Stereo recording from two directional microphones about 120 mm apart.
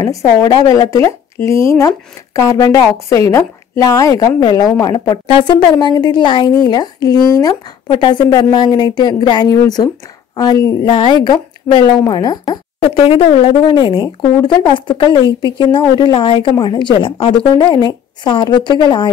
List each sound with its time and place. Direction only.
0.0 s speech: 30° left (ahead or behind)
10.9 s speech: 45° left (ahead or behind)
12.8 s speech: 50° left (ahead or behind)